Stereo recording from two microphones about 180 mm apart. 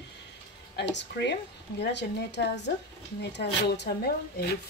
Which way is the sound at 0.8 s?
75° left (ahead or behind).